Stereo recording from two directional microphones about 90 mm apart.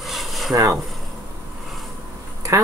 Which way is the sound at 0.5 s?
40° right (ahead or behind).